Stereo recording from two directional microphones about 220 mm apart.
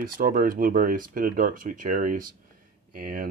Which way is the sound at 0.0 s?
40° right (ahead or behind).